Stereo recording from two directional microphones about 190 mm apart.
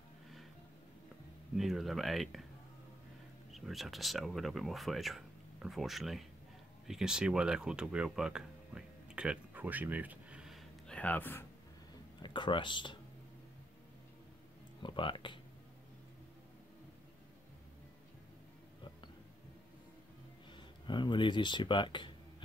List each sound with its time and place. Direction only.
1.6 s speech: centre (ahead or behind)
3.5 s speech: centre (ahead or behind)
12.2 s speech: 25° left (ahead or behind)
14.8 s speech: 25° left (ahead or behind)
20.5 s speech: 25° left (ahead or behind)